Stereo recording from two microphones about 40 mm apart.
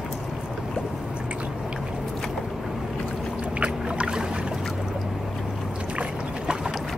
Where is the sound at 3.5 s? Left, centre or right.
Right.